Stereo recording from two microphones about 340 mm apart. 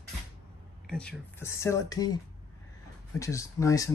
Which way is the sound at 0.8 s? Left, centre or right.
Centre.